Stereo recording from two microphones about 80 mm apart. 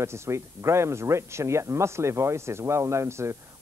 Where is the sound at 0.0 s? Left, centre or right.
Right.